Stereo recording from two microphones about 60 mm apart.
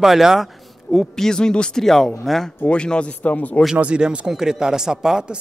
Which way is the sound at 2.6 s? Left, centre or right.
Centre.